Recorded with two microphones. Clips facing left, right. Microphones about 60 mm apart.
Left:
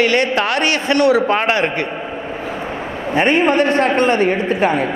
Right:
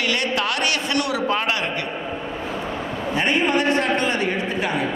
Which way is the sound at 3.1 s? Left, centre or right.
Left.